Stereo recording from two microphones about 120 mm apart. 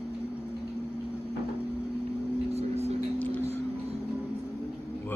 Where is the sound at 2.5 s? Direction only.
60° right (ahead or behind).